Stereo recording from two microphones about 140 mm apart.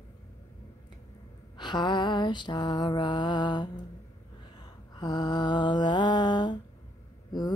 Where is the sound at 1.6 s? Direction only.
30° left (ahead or behind).